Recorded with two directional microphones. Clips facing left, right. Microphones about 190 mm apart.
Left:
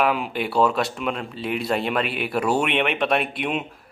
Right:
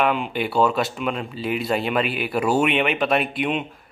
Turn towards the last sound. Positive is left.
turn(degrees=0)  # may be behind; listen again after turning